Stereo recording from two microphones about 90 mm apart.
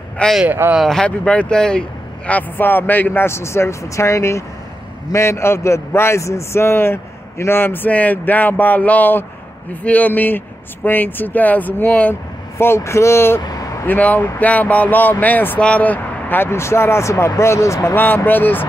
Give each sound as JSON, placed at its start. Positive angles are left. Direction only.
{"t": 0.5, "sound": "speech", "side_deg": -20}
{"t": 0.7, "sound": "a man's voice", "side_deg": 5}
{"t": 12.5, "sound": "a man's voice", "side_deg": 30}
{"t": 13.4, "sound": "vehicle", "side_deg": 45}
{"t": 13.8, "sound": "a man's voice", "side_deg": 20}
{"t": 17.9, "sound": "a man's voice", "side_deg": 20}